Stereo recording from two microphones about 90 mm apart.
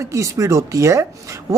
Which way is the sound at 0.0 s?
35° right (ahead or behind).